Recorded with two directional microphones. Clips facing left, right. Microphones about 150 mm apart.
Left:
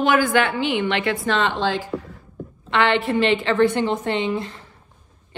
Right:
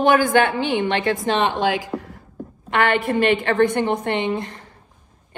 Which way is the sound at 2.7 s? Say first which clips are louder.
Even; 45° right (ahead or behind).